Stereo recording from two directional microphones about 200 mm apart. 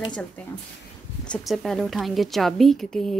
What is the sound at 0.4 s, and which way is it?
A woman's voice, 5° left (ahead or behind).